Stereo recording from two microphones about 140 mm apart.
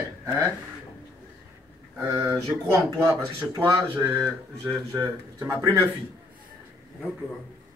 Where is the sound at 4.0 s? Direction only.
5° right (ahead or behind).